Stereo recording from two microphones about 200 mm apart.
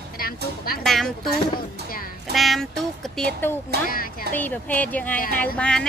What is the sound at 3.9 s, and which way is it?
Speech, 45° left (ahead or behind).